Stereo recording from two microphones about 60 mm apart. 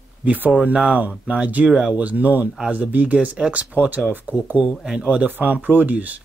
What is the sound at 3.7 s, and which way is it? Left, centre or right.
Speech, right.